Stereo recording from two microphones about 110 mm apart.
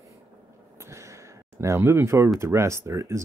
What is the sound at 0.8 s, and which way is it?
Speech, 25° right (ahead or behind).